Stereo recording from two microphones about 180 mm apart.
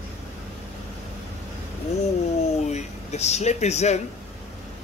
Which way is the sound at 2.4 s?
40° left (ahead or behind).